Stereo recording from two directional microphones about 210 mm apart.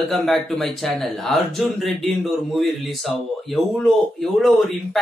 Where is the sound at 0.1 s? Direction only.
Centre (ahead or behind).